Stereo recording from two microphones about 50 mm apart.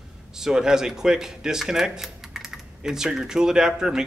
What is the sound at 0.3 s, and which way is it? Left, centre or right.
Speech, centre.